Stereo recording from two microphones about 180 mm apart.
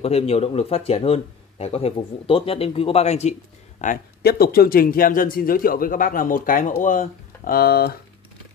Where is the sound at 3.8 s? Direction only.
50° left (ahead or behind).